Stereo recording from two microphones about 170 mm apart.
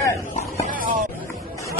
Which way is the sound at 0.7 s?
55° right (ahead or behind).